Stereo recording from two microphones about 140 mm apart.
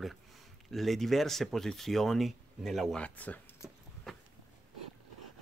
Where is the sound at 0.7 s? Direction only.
Centre (ahead or behind).